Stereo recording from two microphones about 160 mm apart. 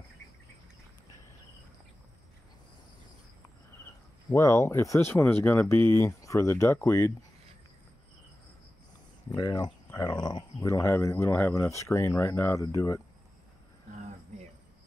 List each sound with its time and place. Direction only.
4.3 s speech: 15° left (ahead or behind)
9.3 s speech: 25° left (ahead or behind)